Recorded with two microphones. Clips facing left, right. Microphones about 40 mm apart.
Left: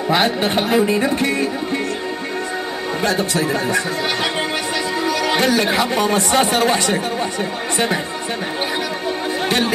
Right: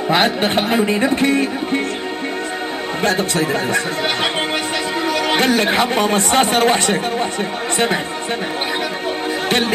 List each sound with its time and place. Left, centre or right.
0.1 s speech: right
3.0 s speech: right